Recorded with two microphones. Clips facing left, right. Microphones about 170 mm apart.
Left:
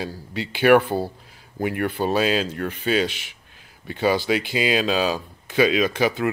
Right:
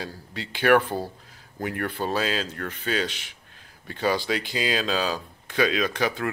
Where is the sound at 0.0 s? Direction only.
5° left (ahead or behind).